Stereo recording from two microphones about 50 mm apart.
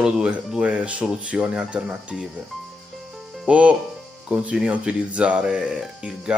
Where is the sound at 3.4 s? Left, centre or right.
Right.